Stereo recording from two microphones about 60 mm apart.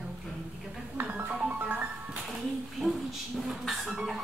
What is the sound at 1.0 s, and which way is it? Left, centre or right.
Music, right.